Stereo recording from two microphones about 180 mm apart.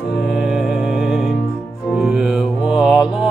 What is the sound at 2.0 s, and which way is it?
Mantra, centre (ahead or behind).